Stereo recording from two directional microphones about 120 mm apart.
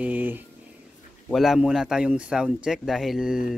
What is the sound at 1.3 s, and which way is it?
Speech, centre (ahead or behind).